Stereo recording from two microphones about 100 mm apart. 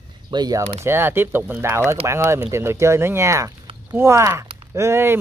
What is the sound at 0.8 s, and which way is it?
Speech, 20° right (ahead or behind).